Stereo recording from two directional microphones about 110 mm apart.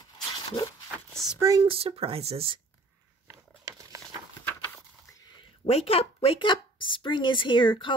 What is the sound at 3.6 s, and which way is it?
Patter, 30° right (ahead or behind).